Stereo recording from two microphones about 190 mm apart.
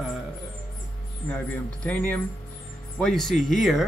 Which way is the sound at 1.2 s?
5° left (ahead or behind).